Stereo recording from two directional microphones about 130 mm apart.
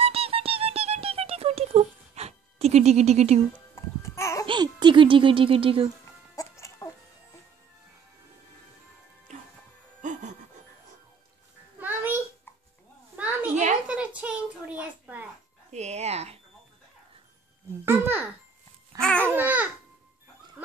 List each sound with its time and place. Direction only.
0.0 s music: 50° right (ahead or behind)
3.7 s music: 20° left (ahead or behind)
4.5 s speech: 35° right (ahead or behind)
6.3 s music: 20° left (ahead or behind)
9.3 s music: 65° right (ahead or behind)
11.8 s babbling: 15° right (ahead or behind)
13.8 s a sound: 10° right (ahead or behind)
15.7 s a sound: 60° right (ahead or behind)
17.8 s babbling: 15° right (ahead or behind)
18.9 s babbling: 10° left (ahead or behind)
19.3 s babbling: 15° right (ahead or behind)